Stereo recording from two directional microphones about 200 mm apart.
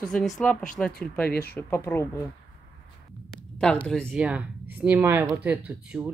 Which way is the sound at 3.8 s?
5° left (ahead or behind).